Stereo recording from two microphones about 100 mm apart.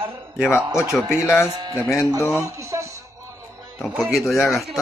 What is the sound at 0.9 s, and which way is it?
Speech, 5° left (ahead or behind).